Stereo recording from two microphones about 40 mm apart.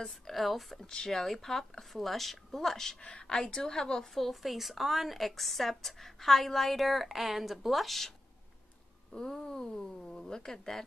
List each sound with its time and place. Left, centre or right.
0.0 s a woman's voice: centre
0.8 s speech: centre
3.0 s a woman's voice: left; by 8.1 s centre
9.1 s speech: centre